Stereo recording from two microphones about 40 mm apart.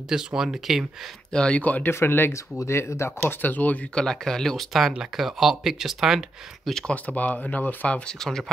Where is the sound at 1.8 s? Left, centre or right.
Left.